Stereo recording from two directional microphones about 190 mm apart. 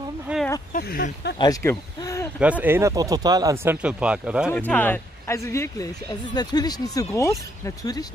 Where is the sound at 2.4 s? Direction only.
10° right (ahead or behind).